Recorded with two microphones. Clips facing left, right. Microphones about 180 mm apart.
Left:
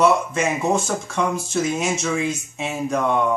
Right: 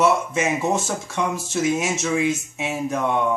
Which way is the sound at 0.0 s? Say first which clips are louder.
Left 1 dB; 5° right (ahead or behind).